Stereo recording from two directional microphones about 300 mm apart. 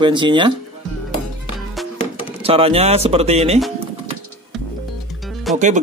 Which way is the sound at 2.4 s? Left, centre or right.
Centre.